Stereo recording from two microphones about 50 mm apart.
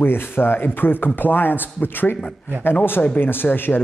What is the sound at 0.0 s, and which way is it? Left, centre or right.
Speech, left.